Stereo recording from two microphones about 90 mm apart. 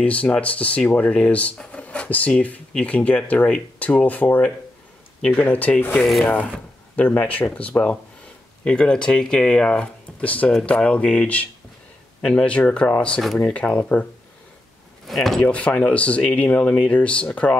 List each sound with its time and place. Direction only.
0.0 s speech: 15° left (ahead or behind)
5.9 s speech: centre (ahead or behind)
6.2 s speech: 15° left (ahead or behind)
13.2 s speech: centre (ahead or behind)
13.5 s speech: 15° left (ahead or behind)
15.0 s speech: centre (ahead or behind)
15.4 s speech: 15° left (ahead or behind)